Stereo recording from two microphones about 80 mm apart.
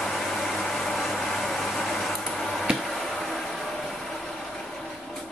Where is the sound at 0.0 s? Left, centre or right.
Centre.